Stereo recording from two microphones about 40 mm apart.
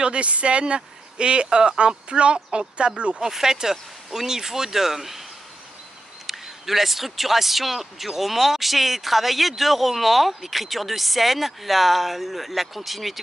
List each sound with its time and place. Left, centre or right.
0.0 s speech: right
3.3 s speech: centre
6.2 s a man's voice: centre